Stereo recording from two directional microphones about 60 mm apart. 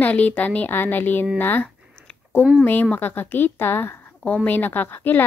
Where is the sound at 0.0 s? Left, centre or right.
Left.